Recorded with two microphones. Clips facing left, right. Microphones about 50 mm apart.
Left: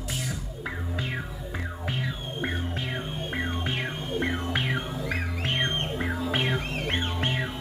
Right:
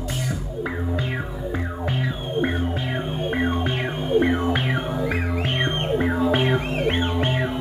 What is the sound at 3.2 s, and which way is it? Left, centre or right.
Music, centre.